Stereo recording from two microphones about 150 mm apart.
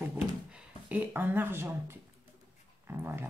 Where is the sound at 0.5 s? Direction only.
10° right (ahead or behind).